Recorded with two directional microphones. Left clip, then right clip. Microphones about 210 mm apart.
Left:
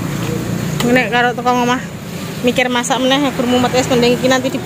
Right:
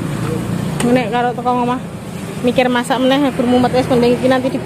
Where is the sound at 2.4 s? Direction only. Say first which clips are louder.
Even; 10° right (ahead or behind).